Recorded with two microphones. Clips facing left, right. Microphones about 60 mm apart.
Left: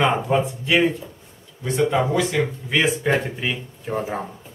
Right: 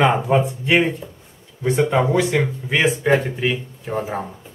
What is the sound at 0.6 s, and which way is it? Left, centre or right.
Speech, right.